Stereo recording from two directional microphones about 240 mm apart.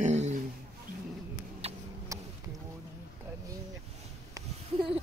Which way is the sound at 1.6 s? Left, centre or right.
Right.